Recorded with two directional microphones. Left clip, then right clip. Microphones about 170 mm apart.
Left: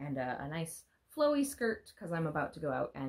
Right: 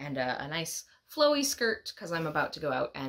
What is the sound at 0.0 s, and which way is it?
Speech, 25° right (ahead or behind).